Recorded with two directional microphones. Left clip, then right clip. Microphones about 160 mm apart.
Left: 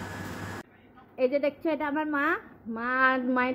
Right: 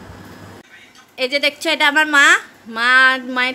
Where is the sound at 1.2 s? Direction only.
5° right (ahead or behind).